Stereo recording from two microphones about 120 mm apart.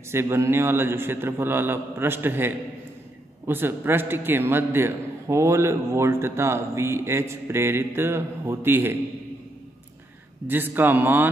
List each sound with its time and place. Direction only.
0.1 s a man's voice: 20° right (ahead or behind)
10.4 s speech: 15° right (ahead or behind)